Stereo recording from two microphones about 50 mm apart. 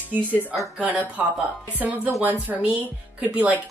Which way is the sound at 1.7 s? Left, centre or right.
Right.